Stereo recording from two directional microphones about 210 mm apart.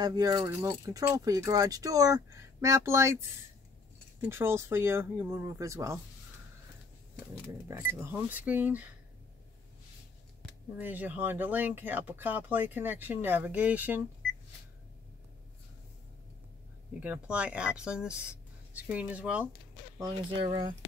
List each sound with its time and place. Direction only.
0.0 s speech: 20° right (ahead or behind)
4.2 s speech: 10° right (ahead or behind)
7.6 s speech: 10° right (ahead or behind)
10.8 s speech: 10° right (ahead or behind)
17.0 s speech: 5° right (ahead or behind)
20.0 s speech: 25° right (ahead or behind)